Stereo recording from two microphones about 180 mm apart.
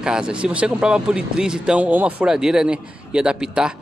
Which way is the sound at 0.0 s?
5° right (ahead or behind).